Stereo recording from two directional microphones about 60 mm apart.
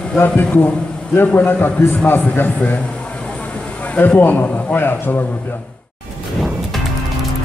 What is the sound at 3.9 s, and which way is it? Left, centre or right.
A man's voice, left.